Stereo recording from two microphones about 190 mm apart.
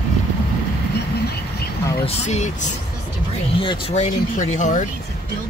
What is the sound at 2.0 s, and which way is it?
Speech, 35° left (ahead or behind).